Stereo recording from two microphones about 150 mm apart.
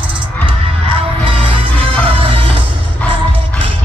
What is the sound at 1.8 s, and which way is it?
Music, 35° right (ahead or behind).